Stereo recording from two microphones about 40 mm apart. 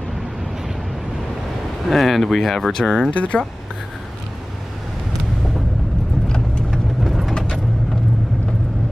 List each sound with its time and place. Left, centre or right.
1.9 s speech: centre
3.1 s speech: left
6.2 s vehicle: left
7.0 s vehicle: centre
7.3 s vehicle: centre